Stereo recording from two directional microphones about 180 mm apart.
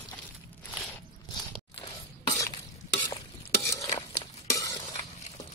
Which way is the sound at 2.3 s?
20° left (ahead or behind).